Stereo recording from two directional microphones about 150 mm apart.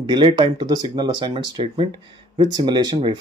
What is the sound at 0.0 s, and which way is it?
Speech, 30° right (ahead or behind).